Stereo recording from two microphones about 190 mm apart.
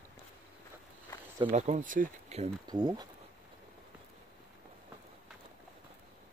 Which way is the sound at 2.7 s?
20° right (ahead or behind).